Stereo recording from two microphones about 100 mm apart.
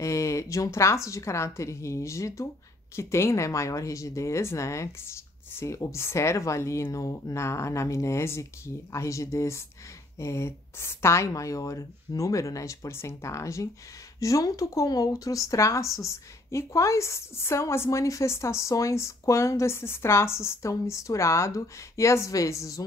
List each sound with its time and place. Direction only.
0.0 s speech: 30° left (ahead or behind)